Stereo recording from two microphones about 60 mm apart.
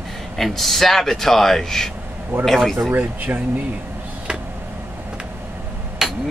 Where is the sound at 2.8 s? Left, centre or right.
Right.